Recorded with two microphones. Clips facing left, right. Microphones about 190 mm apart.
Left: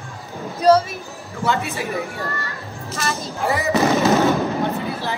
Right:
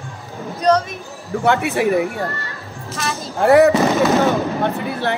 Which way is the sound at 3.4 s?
60° right (ahead or behind).